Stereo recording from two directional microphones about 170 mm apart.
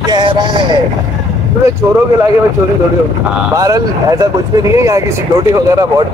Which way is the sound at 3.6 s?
20° right (ahead or behind).